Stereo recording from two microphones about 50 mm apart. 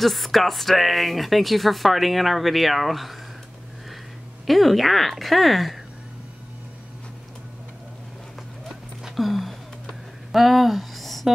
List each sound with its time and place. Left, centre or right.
0.0 s speech: centre
4.5 s speech: centre
8.6 s a sound: centre